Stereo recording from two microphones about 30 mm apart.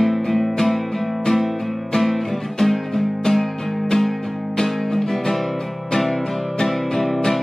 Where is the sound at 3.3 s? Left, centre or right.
Left.